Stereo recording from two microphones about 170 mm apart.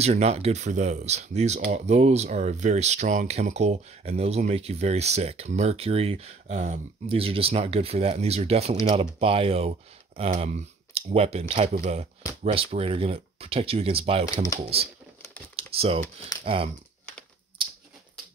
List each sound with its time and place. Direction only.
0.0 s speech: 40° right (ahead or behind)